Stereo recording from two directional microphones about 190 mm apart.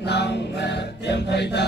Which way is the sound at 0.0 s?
60° left (ahead or behind).